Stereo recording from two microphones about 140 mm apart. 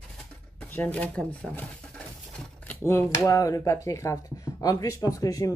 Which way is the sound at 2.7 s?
15° left (ahead or behind).